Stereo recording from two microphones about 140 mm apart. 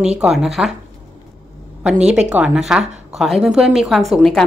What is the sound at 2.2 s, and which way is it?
A woman's voice, 5° right (ahead or behind).